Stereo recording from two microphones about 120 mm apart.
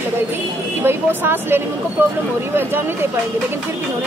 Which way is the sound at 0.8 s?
20° right (ahead or behind).